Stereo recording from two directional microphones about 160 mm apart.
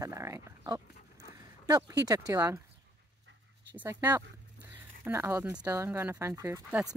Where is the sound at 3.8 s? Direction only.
10° right (ahead or behind).